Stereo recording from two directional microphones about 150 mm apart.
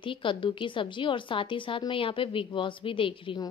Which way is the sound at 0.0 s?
35° left (ahead or behind).